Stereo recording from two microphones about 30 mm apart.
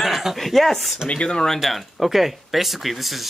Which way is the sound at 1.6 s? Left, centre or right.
Centre.